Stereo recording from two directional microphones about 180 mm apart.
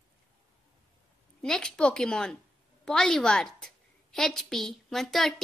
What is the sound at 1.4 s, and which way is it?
A woman's voice, 5° left (ahead or behind).